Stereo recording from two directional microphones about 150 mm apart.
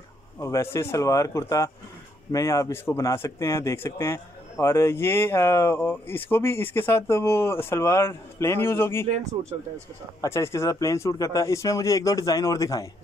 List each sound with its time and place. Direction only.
0.4 s speech: 20° left (ahead or behind)
10.2 s speech: 20° left (ahead or behind)